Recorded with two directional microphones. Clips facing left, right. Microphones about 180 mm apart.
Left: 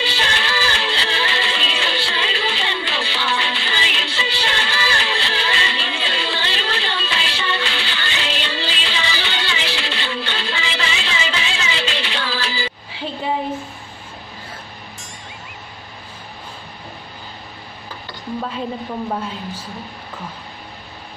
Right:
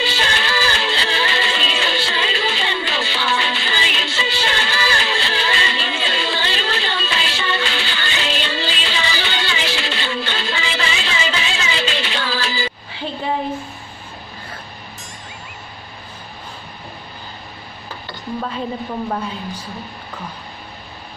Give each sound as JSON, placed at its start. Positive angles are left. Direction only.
{"t": 0.0, "sound": "music", "side_deg": -45}
{"t": 12.9, "sound": "a sound", "side_deg": 5}
{"t": 19.0, "sound": "a woman's voice", "side_deg": 5}